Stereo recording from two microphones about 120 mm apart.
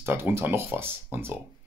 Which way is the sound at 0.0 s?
20° right (ahead or behind).